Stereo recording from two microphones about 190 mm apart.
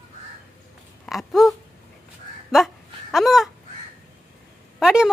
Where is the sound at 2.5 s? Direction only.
Centre (ahead or behind).